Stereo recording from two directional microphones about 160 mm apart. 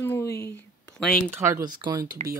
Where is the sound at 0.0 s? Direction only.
15° left (ahead or behind).